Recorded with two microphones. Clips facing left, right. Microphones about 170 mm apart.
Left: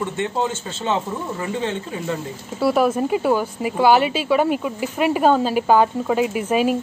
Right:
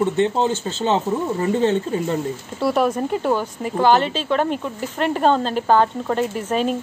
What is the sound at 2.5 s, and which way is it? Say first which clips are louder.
A woman's voice: left 2 dB; 5° left (ahead or behind).